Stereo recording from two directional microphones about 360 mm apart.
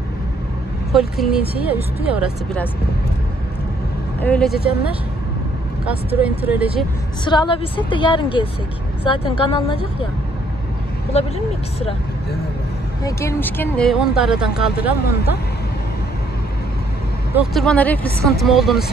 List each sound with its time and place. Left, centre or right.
0.9 s speech: centre
4.2 s speech: centre
5.9 s speech: centre
7.2 s a woman's voice: centre
11.1 s a woman's voice: centre
13.0 s speech: centre
14.6 s speech: left
17.3 s speech: centre